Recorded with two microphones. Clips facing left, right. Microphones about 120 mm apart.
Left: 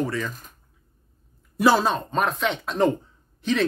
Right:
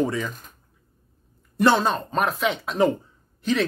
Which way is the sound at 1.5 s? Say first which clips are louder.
Even; 5° left (ahead or behind).